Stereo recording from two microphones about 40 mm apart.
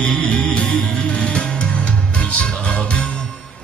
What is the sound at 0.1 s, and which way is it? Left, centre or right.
Music, left.